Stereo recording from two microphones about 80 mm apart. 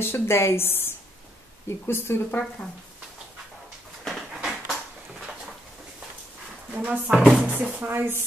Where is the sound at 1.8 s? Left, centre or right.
Left.